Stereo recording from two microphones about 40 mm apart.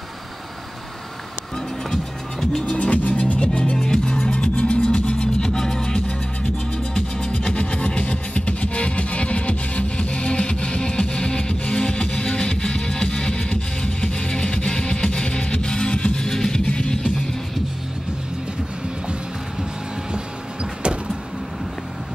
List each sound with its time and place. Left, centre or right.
2.6 s music: left
3.7 s music: centre
16.3 s music: centre
16.6 s music: left